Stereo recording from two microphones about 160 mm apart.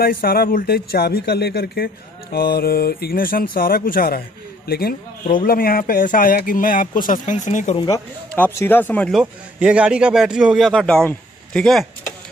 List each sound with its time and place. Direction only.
0.0 s speech: 70° left (ahead or behind)
5.2 s speech: 60° left (ahead or behind)
7.7 s speech: 30° left (ahead or behind)
8.4 s speech: 15° left (ahead or behind)
9.1 s speech: 5° right (ahead or behind)